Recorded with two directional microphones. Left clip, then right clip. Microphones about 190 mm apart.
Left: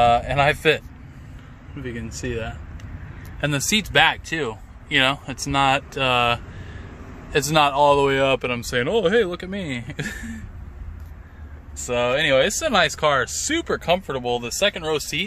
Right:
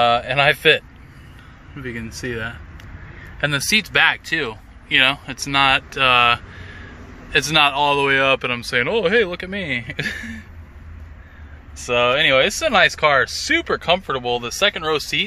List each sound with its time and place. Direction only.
0.0 s speech: 10° left (ahead or behind)
1.8 s speech: 10° right (ahead or behind)
3.6 s speech: 30° left (ahead or behind); by 10.4 s 5° left (ahead or behind)
11.8 s speech: centre (ahead or behind)